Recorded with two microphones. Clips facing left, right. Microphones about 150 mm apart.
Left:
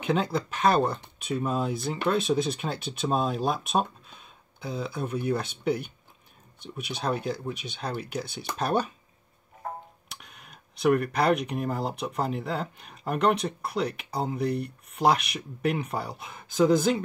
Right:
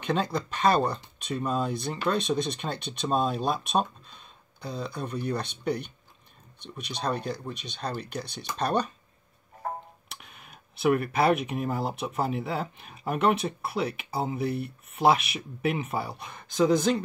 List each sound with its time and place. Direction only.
0.0 s speech: 5° left (ahead or behind)
10.0 s speech: centre (ahead or behind)